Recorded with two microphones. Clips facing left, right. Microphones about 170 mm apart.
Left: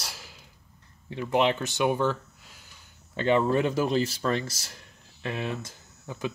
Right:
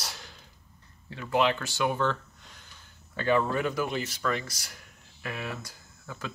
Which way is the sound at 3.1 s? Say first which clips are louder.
Left 3 dB; 20° left (ahead or behind).